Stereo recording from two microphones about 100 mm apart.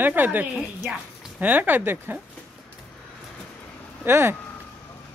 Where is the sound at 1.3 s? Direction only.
15° right (ahead or behind).